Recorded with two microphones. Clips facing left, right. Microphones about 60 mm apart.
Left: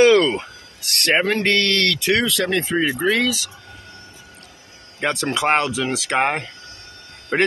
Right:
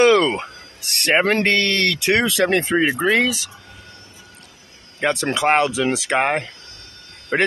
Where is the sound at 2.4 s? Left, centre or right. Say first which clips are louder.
Right 3 dB; right.